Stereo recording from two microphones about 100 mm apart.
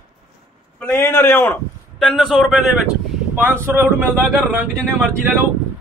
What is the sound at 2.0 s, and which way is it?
Speech, centre (ahead or behind).